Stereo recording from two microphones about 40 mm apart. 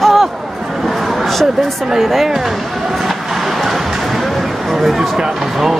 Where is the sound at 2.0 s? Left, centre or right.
Centre.